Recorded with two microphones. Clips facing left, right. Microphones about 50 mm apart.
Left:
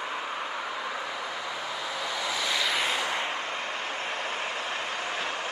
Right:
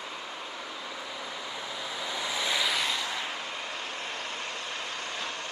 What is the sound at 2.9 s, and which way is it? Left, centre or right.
Vehicle, left.